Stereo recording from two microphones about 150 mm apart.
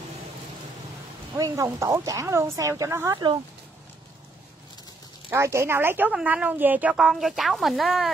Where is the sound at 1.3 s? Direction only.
20° right (ahead or behind).